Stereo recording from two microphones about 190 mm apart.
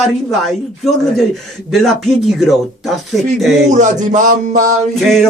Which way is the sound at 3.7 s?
40° right (ahead or behind).